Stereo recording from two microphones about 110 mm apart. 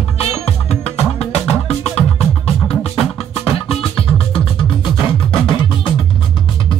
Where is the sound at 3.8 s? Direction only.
55° left (ahead or behind).